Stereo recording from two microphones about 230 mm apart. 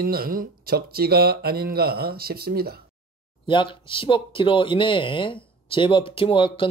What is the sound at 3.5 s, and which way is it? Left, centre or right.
Speech, left.